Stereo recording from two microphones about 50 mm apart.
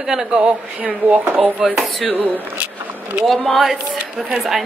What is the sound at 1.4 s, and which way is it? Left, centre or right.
Speech, centre.